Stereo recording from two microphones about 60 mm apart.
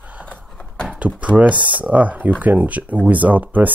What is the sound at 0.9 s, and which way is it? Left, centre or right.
Speech, right.